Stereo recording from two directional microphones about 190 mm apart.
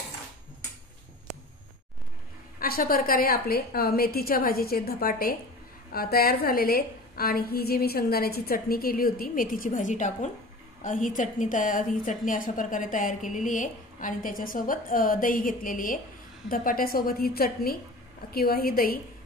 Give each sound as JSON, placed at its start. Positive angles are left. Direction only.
{"t": 2.6, "sound": "a woman's voice", "side_deg": 50}